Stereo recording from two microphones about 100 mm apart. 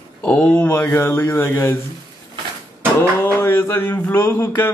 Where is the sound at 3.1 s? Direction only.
20° left (ahead or behind).